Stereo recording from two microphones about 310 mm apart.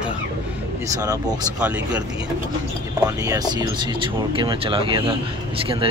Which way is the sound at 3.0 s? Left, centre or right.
Centre.